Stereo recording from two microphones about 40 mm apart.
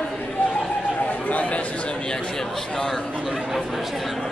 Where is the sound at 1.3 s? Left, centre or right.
Left.